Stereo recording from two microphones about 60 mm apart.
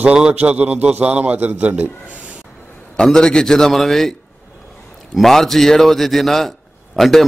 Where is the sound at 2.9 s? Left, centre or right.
Centre.